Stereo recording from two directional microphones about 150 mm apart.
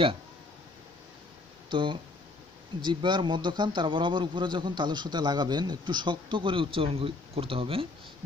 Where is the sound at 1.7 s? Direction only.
30° right (ahead or behind).